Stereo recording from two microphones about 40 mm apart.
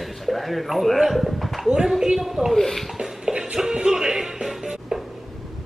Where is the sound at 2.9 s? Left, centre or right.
Centre.